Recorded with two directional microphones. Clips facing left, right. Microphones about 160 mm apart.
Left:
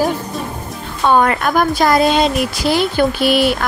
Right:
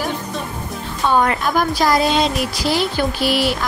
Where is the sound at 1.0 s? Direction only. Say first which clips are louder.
Left 3 dB; 60° left (ahead or behind).